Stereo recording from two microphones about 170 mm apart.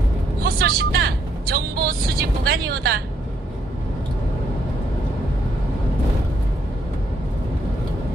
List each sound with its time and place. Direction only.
0.4 s vehicle: 65° right (ahead or behind)